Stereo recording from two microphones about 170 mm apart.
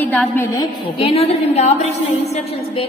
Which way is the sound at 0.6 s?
35° left (ahead or behind).